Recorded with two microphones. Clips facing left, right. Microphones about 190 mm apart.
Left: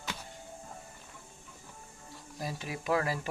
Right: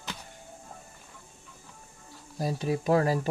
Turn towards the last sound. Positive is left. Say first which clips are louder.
# right 7 dB
turn(degrees=-35)  # may be behind; listen again after turning